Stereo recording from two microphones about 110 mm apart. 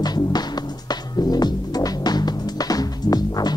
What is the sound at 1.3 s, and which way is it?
Music, 35° left (ahead or behind).